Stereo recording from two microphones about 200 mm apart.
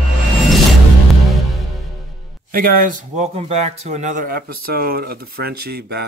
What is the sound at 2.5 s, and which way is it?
A man's voice, 45° right (ahead or behind).